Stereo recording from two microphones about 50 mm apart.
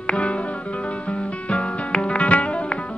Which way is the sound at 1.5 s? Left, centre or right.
Left.